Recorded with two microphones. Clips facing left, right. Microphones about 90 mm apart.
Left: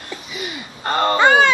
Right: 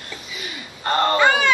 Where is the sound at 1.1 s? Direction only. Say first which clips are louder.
Left 6 dB; 35° left (ahead or behind).